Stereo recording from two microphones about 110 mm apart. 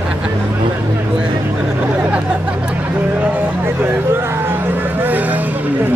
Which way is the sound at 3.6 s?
20° right (ahead or behind).